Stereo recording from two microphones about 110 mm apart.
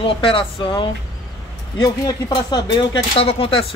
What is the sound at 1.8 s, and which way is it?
Speech, 35° left (ahead or behind).